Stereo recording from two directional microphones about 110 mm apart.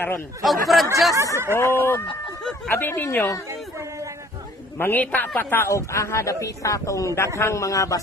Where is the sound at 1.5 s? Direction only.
25° left (ahead or behind).